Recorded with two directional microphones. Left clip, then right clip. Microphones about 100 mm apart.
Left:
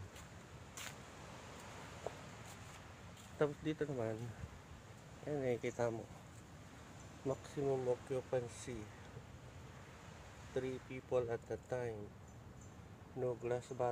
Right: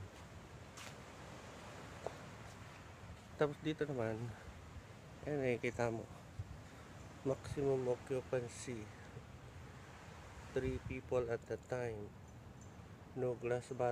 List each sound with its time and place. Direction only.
3.3 s speech: 15° right (ahead or behind)
5.2 s speech: 25° right (ahead or behind)
7.2 s speech: 20° right (ahead or behind)
7.9 s speech: 10° right (ahead or behind)
10.5 s speech: 10° right (ahead or behind)
13.2 s speech: 15° right (ahead or behind)